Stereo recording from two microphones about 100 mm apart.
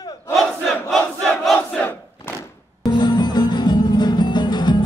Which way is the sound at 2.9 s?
45° left (ahead or behind).